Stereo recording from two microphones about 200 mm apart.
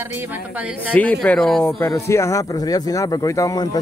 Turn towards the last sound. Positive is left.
turn(degrees=15)  # may be behind; listen again after turning